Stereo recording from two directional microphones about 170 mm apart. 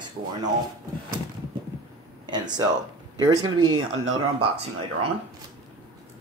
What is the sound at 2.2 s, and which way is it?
Speech, 25° right (ahead or behind).